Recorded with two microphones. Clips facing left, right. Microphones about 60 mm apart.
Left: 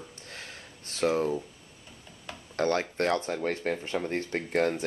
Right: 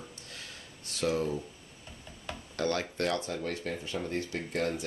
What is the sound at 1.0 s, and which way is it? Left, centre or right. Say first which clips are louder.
Speech: left 4 dB; left.